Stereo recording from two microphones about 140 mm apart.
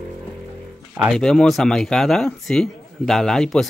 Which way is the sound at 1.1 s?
5° left (ahead or behind).